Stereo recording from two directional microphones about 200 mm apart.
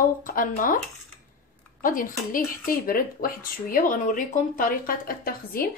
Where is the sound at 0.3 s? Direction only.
45° left (ahead or behind).